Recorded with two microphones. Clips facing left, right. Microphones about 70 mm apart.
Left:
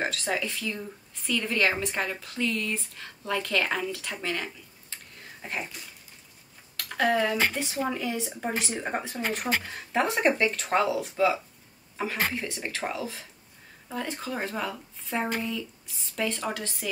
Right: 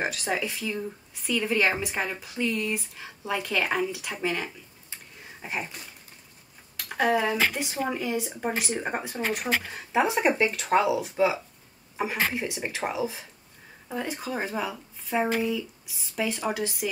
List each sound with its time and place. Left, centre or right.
0.0 s speech: centre
6.8 s speech: centre
12.0 s speech: centre